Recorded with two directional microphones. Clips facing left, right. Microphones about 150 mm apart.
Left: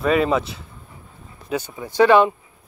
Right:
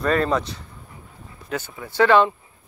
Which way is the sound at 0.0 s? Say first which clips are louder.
Left 2 dB; 5° left (ahead or behind).